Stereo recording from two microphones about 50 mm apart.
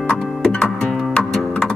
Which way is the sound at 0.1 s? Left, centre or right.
Centre.